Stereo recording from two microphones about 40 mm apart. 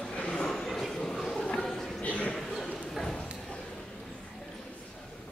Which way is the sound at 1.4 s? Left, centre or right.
Centre.